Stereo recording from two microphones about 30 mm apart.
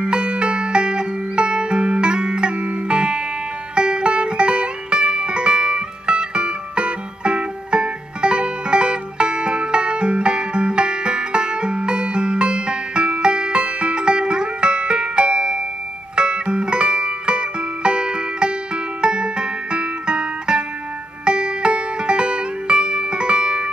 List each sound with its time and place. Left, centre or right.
0.0 s music: right